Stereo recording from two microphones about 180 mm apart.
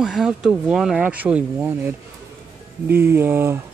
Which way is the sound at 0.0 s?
Centre (ahead or behind).